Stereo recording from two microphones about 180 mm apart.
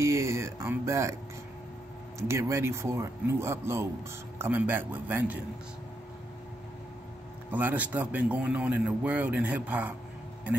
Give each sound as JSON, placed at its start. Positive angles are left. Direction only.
{"t": 0.0, "sound": "a sound", "side_deg": -15}
{"t": 2.1, "sound": "a man's voice", "side_deg": -15}
{"t": 7.5, "sound": "a man's voice", "side_deg": -10}